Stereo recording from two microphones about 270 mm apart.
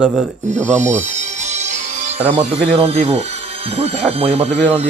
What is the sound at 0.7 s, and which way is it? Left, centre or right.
Speech, right.